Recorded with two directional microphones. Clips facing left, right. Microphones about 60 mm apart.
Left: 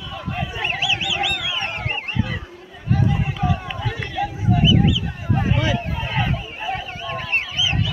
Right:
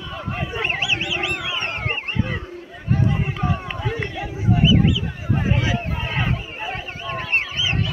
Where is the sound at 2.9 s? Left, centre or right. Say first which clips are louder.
Even; right.